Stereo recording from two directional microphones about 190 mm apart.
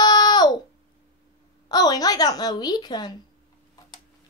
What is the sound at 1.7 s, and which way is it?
Speech, 20° left (ahead or behind).